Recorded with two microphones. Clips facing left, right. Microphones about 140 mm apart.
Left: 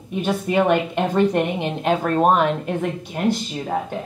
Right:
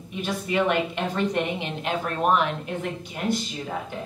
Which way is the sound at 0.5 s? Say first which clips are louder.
Left 4 dB; 40° left (ahead or behind).